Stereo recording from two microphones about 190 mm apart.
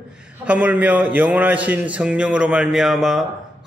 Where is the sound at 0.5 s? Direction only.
10° right (ahead or behind).